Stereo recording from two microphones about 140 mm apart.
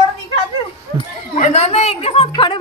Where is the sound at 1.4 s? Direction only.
50° left (ahead or behind).